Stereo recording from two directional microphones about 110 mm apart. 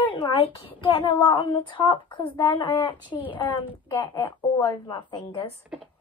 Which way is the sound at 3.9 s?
30° left (ahead or behind).